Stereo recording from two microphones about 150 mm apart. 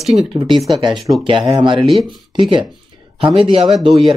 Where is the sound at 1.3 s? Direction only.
35° right (ahead or behind).